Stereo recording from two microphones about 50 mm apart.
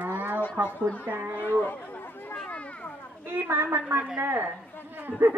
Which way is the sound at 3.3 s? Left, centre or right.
Right.